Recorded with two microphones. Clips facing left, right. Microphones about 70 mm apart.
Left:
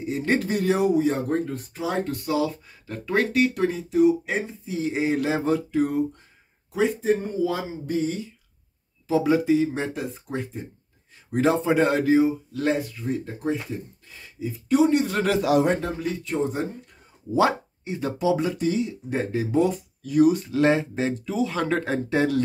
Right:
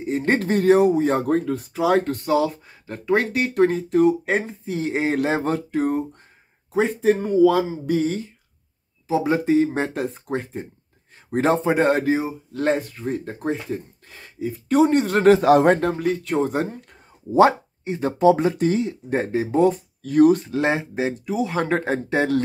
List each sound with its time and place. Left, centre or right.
0.0 s speech: right
1.0 s a sound: right
2.0 s speech: right
7.0 s a sound: right
8.0 s speech: right
9.0 s speech: right
9.3 s speech: right
11.3 s speech: right
17.3 s speech: right
20.0 s speech: right
20.4 s speech: right